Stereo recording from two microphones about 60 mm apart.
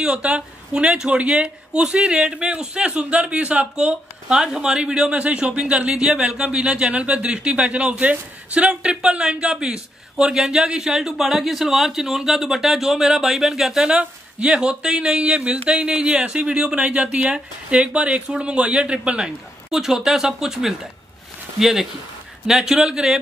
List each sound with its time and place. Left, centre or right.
0.0 s a woman's voice: centre